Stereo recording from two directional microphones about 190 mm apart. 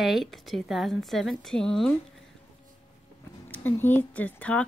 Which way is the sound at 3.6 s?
10° left (ahead or behind).